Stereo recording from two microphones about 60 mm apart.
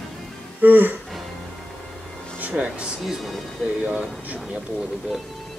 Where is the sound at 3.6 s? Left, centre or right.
Right.